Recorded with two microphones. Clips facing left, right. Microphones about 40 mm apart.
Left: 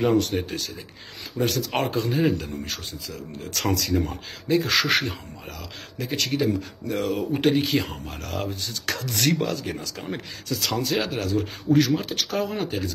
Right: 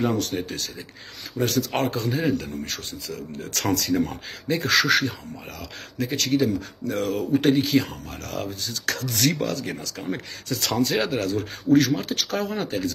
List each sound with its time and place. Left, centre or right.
0.1 s speech: centre
4.8 s speech: left
5.9 s speech: centre
8.5 s speech: left
9.3 s speech: centre